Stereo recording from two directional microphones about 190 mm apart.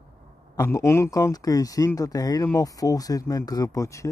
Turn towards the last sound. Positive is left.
turn(degrees=15)  # may be behind; listen again after turning